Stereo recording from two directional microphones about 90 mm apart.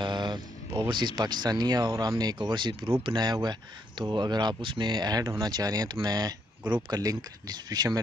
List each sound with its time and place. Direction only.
0.0 s speech: 55° right (ahead or behind)